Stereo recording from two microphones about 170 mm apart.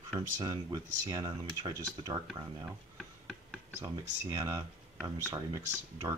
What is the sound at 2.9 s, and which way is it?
Tick-tock, centre (ahead or behind).